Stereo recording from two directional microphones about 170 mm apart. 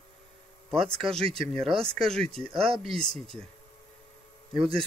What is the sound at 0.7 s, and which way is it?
Speech, centre (ahead or behind).